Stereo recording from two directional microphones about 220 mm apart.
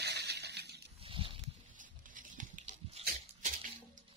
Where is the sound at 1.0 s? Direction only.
25° right (ahead or behind).